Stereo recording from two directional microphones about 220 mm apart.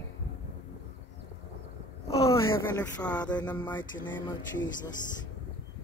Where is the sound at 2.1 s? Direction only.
15° left (ahead or behind).